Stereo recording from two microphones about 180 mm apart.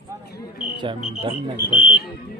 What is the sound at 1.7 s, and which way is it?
Speech, 30° left (ahead or behind).